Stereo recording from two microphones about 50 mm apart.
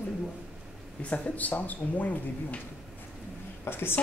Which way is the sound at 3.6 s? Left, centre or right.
Left.